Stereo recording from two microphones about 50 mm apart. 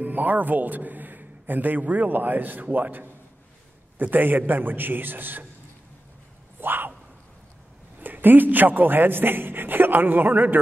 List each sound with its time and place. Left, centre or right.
0.0 s a man's voice: right
6.6 s a sound: right
8.0 s a man's voice: right